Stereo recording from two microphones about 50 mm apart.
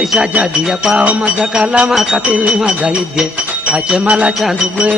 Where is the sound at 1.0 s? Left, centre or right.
Right.